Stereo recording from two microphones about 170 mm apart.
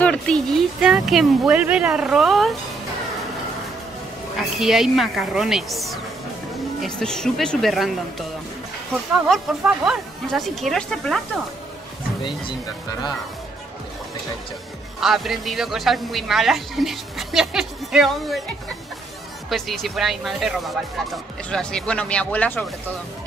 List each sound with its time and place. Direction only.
0.0 s speech: 5° left (ahead or behind)
4.4 s speech: centre (ahead or behind)
9.3 s speech: 5° right (ahead or behind)
15.0 s speech: centre (ahead or behind)
19.5 s speech: centre (ahead or behind)